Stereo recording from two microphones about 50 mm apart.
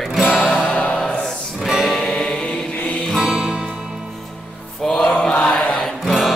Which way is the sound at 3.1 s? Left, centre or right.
Centre.